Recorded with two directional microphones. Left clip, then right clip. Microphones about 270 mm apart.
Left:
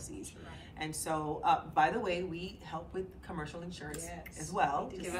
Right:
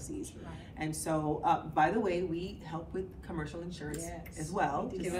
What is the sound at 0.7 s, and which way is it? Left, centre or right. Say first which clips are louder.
A woman's voice: right 2 dB; centre.